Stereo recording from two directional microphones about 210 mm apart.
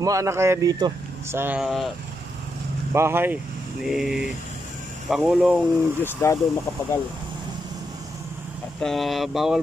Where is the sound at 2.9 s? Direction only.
10° right (ahead or behind).